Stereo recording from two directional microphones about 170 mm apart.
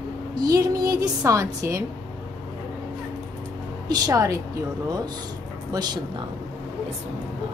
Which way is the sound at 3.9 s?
20° right (ahead or behind).